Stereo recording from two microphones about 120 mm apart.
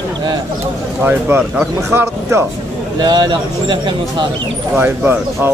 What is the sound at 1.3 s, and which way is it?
A man's voice, 20° right (ahead or behind).